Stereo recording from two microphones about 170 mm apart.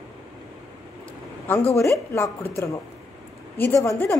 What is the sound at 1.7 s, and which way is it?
A woman's voice, 15° left (ahead or behind).